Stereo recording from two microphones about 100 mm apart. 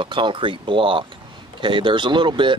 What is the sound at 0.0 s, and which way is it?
Speech, 55° right (ahead or behind).